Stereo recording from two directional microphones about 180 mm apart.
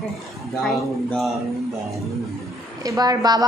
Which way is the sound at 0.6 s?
Centre (ahead or behind).